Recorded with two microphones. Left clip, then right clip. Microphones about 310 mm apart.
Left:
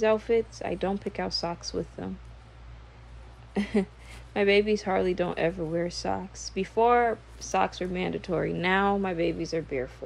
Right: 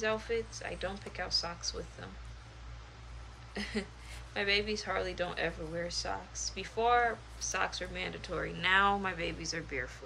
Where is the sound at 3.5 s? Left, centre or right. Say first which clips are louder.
Left 10 dB; centre.